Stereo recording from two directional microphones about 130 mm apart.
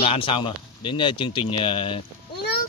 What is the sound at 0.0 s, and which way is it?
Speech, 45° left (ahead or behind).